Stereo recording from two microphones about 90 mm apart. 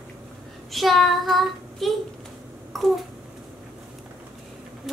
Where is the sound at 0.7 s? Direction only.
Centre (ahead or behind).